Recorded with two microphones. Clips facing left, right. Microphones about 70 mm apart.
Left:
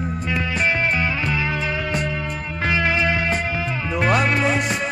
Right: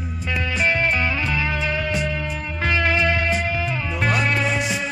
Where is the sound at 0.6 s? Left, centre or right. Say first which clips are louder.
Right 1 dB; centre.